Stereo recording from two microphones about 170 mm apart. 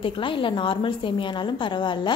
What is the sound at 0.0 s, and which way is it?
A woman's voice, 30° left (ahead or behind).